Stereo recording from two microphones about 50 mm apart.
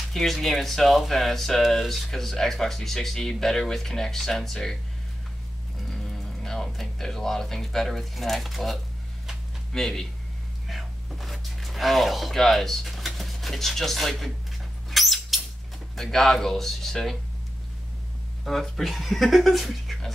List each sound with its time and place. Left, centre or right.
0.1 s speech: centre
5.9 s speech: centre
9.8 s speech: centre
10.7 s a sound: centre
12.4 s speech: centre
14.9 s a sound: centre
16.0 s speech: centre
18.4 s speech: centre